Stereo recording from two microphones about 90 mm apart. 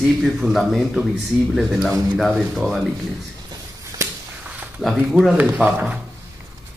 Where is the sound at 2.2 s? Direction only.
5° right (ahead or behind).